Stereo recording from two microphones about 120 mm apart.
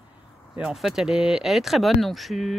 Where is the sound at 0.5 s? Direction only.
5° right (ahead or behind).